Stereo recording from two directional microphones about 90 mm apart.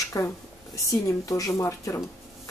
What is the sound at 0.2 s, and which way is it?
Speech, 35° left (ahead or behind).